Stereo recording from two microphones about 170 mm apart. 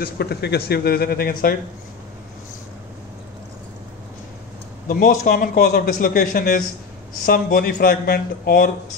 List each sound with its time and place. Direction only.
0.0 s a man's voice: 70° left (ahead or behind)
4.8 s a man's voice: 55° left (ahead or behind)